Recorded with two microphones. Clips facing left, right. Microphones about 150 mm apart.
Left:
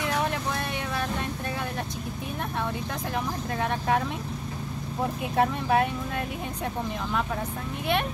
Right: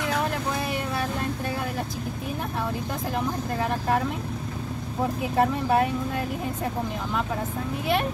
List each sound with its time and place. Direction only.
5.3 s speech: centre (ahead or behind)